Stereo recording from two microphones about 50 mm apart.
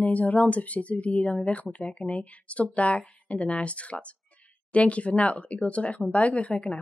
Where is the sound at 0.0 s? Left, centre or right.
Left.